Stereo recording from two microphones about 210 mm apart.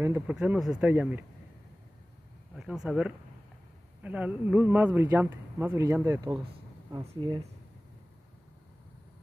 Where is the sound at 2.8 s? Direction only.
5° right (ahead or behind); by 7.4 s 20° right (ahead or behind).